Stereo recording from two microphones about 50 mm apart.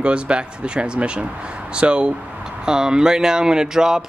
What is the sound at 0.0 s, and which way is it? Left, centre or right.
Speech, right.